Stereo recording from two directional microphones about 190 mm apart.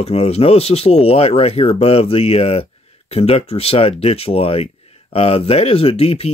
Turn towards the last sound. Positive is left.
turn(degrees=30)  # may be behind; listen again after turning